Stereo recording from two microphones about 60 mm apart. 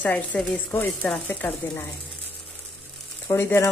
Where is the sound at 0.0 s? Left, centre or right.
Left.